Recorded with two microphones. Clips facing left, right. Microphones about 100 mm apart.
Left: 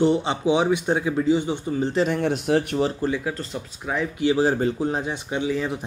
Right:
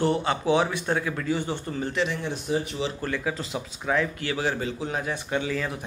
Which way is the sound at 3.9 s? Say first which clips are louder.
Left 3 dB; 15° left (ahead or behind).